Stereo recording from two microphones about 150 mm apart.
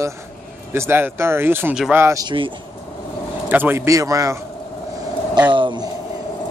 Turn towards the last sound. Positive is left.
turn(degrees=-30)  # may be behind; listen again after turning